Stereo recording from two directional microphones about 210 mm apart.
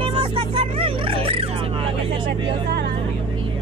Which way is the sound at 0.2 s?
25° right (ahead or behind).